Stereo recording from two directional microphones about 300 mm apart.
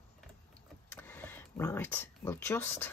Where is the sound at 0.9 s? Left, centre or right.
Centre.